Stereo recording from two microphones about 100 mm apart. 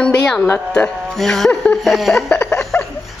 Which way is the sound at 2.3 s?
20° left (ahead or behind).